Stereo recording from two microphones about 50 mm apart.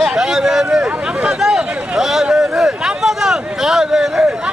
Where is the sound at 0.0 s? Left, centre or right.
Centre.